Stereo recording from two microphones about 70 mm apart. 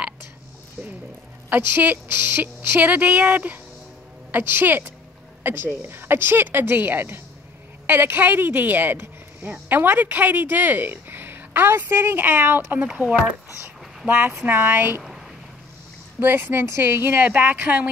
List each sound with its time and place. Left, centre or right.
1.5 s a woman's voice: right
14.0 s speech: right
15.0 s a sound: centre
16.2 s a woman's voice: right